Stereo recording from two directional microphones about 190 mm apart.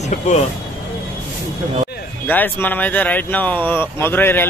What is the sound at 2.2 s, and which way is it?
Speech, 10° left (ahead or behind).